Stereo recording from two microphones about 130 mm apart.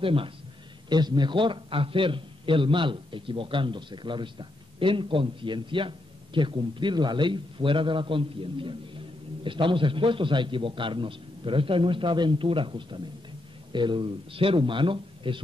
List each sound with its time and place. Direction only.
0.0 s a man's voice: 45° right (ahead or behind)